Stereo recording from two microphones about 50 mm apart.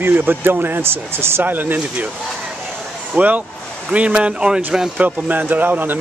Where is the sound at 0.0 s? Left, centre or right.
Right.